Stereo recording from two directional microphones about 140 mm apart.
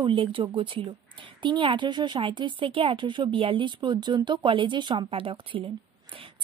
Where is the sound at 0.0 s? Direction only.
40° right (ahead or behind).